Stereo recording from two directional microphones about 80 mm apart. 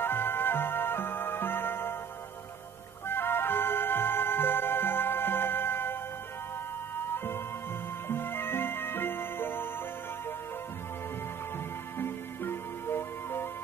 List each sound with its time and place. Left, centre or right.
0.0 s music: left
3.1 s music: left
8.1 s music: left
12.0 s music: left